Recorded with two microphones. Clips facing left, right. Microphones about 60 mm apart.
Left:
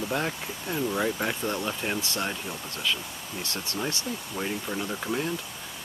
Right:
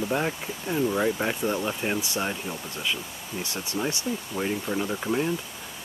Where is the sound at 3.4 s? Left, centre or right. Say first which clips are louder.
Right 2 dB; centre.